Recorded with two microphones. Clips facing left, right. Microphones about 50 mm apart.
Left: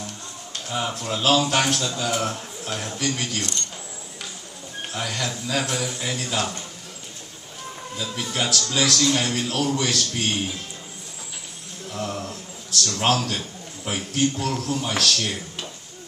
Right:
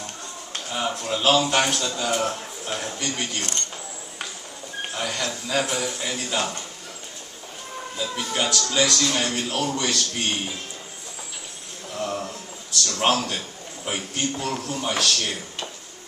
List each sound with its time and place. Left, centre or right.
0.7 s speech: centre
3.3 s speech: right
4.9 s speech: centre
8.4 s speech: centre
11.9 s a sound: centre
13.8 s speech: centre